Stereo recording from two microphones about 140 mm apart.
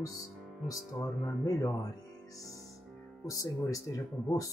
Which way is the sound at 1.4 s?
25° left (ahead or behind).